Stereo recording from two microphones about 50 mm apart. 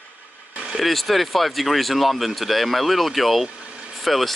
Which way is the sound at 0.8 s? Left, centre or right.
Centre.